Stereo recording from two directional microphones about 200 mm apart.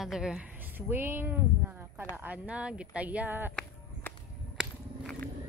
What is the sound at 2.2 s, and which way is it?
Speech, 10° right (ahead or behind).